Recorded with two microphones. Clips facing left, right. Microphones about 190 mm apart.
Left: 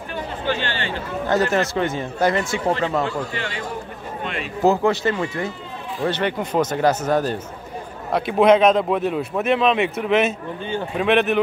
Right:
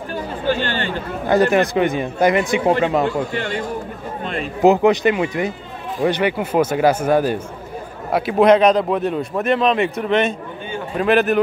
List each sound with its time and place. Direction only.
0.6 s speech: 45° right (ahead or behind)
1.3 s speech: 15° right (ahead or behind)
3.3 s speech: 50° right (ahead or behind)
4.6 s a man's voice: 15° right (ahead or behind); by 11.3 s centre (ahead or behind)